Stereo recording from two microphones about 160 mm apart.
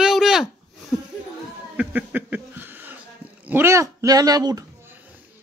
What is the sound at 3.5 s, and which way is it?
Speech, 15° right (ahead or behind).